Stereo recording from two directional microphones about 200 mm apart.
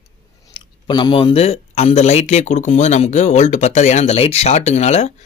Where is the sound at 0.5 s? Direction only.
25° left (ahead or behind).